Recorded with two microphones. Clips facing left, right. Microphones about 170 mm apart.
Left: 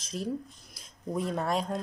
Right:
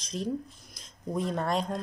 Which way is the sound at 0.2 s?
5° left (ahead or behind).